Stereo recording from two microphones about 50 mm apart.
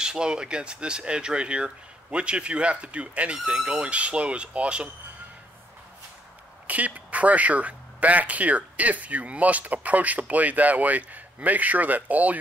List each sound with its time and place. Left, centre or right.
0.0 s speech: centre
6.7 s speech: right